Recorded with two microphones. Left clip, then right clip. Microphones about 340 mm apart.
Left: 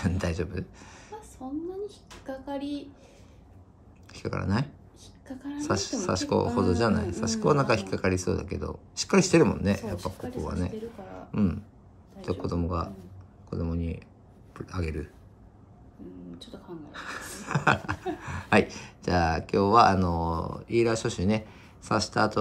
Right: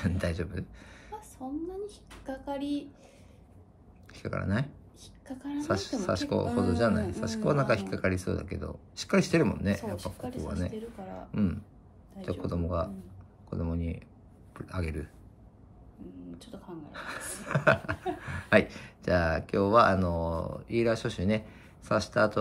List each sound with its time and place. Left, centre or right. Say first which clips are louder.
0.0 s speech: left 2 dB; centre
1.9 s speech: left 2 dB; right
4.1 s speech: left 2 dB; centre
5.0 s a sound: left 1 dB; right
5.6 s speech: left 2 dB; centre
10.7 s a sound: left 2 dB; right
11.3 s speech: left 4 dB; centre
16.9 s a sound: left 1 dB; centre
18.2 s speech: left 1 dB; centre